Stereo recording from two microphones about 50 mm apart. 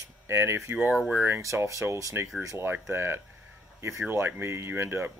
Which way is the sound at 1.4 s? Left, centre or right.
Right.